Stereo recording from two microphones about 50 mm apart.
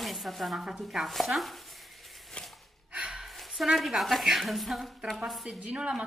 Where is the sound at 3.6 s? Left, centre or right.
Centre.